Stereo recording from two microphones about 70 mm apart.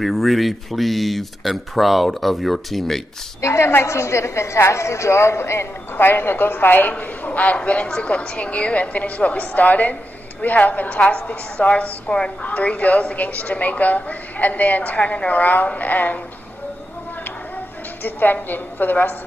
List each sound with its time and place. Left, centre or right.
0.0 s speech: centre
3.3 s a woman's voice: left
18.0 s a woman's voice: left